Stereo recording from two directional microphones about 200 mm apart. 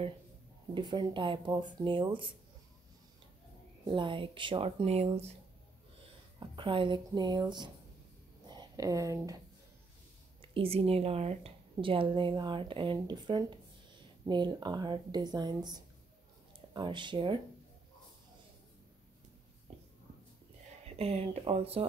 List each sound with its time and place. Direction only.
0.7 s a woman's voice: 25° right (ahead or behind)
3.8 s a woman's voice: 25° right (ahead or behind)
6.5 s a woman's voice: 25° right (ahead or behind)
10.4 s a woman's voice: 25° right (ahead or behind)
19.7 s a sound: 35° right (ahead or behind)
20.9 s a woman's voice: 30° right (ahead or behind)